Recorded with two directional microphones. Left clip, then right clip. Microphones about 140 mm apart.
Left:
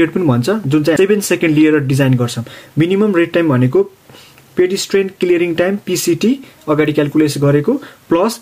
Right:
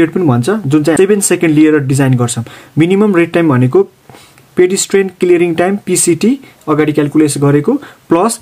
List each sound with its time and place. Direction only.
0.0 s speech: 25° right (ahead or behind); by 4.9 s 45° right (ahead or behind)
4.9 s speech: 30° right (ahead or behind)